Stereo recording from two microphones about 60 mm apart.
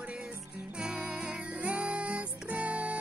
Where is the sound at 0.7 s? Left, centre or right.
Centre.